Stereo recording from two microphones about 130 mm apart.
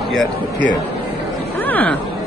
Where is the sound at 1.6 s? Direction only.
10° left (ahead or behind).